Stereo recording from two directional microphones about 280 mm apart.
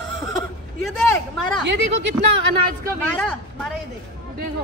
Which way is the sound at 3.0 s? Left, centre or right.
Centre.